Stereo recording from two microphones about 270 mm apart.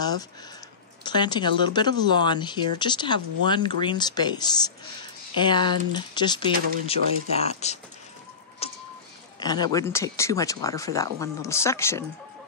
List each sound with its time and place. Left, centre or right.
1.0 s speech: centre
8.6 s bird: left
9.4 s speech: centre